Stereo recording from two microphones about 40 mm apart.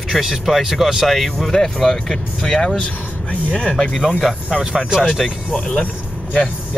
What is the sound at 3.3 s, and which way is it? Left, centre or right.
Speech, left.